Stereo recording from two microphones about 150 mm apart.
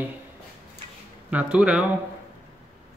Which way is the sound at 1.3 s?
10° right (ahead or behind).